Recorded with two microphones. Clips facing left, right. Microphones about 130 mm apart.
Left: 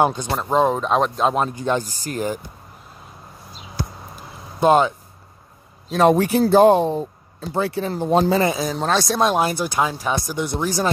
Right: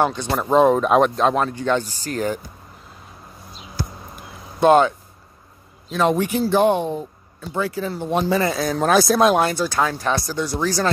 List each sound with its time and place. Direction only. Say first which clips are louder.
0.3 s speech: right 3 dB; centre (ahead or behind)
1.3 s speech: right 1 dB; 15° left (ahead or behind)
4.6 s speech: right 1 dB; 5° left (ahead or behind)
5.9 s speech: left 4 dB; 35° left (ahead or behind)
8.5 s speech: right 4 dB; centre (ahead or behind)
9.5 s speech: right 1 dB; 15° left (ahead or behind)